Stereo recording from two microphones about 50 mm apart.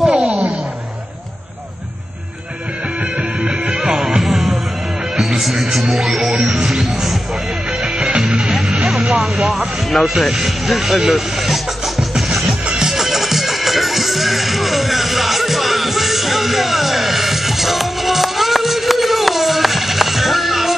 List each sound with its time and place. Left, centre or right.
0.1 s a sound: right
3.2 s music: centre
5.2 s speech: centre
6.8 s music: centre
9.2 s vehicle: centre
9.8 s speech: centre
12.6 s music: centre